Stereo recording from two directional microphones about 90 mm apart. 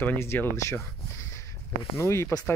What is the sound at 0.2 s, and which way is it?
Speech, 30° left (ahead or behind).